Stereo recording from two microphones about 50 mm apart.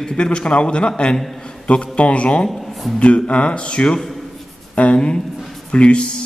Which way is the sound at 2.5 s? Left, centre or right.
Centre.